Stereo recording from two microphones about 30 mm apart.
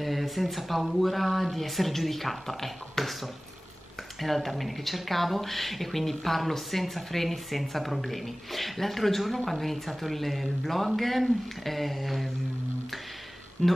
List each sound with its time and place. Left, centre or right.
0.0 s speech: centre
4.2 s speech: centre
13.6 s speech: centre